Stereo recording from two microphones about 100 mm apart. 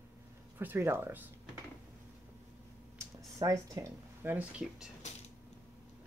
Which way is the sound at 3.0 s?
35° right (ahead or behind).